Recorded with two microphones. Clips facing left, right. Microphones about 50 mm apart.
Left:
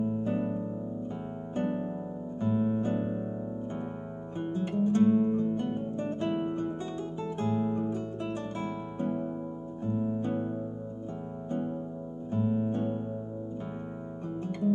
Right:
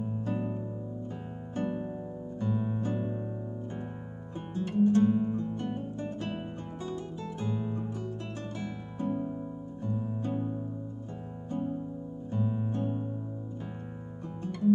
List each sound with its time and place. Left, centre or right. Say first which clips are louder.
0.2 s music: left 3 dB; centre
4.6 s music: right 2 dB; left
12.3 s music: left 4 dB; centre